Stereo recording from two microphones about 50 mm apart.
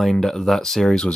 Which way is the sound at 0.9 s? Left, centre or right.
Centre.